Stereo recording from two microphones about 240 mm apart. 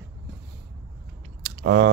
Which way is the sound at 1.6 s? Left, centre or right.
Right.